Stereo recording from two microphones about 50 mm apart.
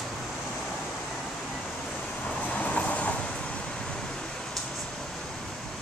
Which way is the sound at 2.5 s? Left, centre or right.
Left.